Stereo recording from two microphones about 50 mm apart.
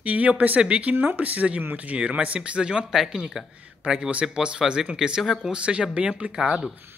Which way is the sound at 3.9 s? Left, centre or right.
Centre.